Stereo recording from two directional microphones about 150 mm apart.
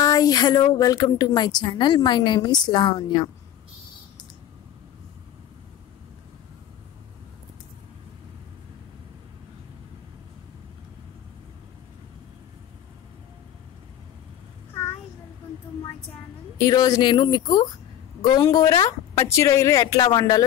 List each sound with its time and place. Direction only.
0.0 s a woman's voice: 25° left (ahead or behind)
16.5 s a woman's voice: 25° left (ahead or behind)